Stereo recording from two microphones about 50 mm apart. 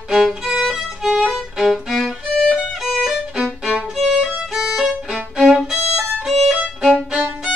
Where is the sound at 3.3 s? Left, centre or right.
Centre.